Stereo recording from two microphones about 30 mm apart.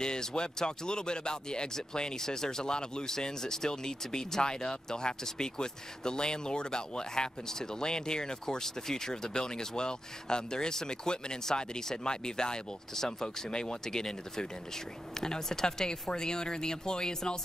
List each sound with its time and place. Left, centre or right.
0.0 s speech: left
13.5 s speech: left